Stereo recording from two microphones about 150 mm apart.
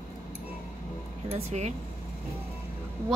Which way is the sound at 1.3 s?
45° right (ahead or behind).